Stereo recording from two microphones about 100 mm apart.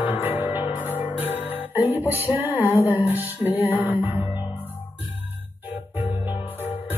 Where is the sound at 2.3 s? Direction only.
20° right (ahead or behind).